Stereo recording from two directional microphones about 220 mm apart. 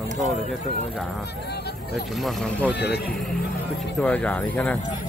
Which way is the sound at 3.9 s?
5° left (ahead or behind).